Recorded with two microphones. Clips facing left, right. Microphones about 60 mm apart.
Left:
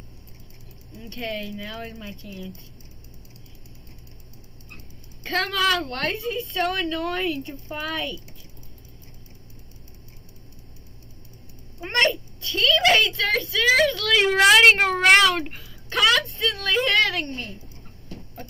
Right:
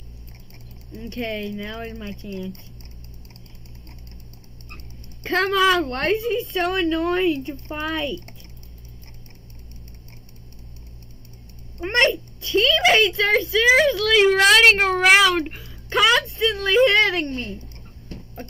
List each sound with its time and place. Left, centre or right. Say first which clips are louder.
1.0 s speech: right 3 dB; centre
5.5 s speech: right 5 dB; centre
5.8 s a woman's voice: right 6 dB; right
7.2 s speech: right 6 dB; centre
11.8 s a sound: right 3 dB; centre
12.4 s a sound: right 6 dB; centre
12.7 s a child's voice: even; centre
17.4 s speech: right 4 dB; centre